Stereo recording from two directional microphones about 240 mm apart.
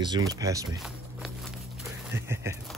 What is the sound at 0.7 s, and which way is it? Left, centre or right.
Walk, centre.